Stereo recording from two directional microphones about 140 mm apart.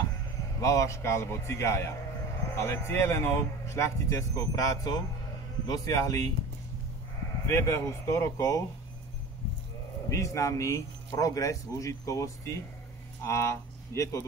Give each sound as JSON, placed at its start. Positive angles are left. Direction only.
{"t": 0.6, "sound": "speech", "side_deg": 25}
{"t": 7.4, "sound": "speech", "side_deg": 20}
{"t": 10.0, "sound": "speech", "side_deg": 20}